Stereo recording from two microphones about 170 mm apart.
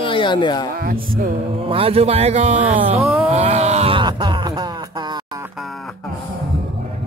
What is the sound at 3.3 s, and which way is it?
Groan, 40° right (ahead or behind).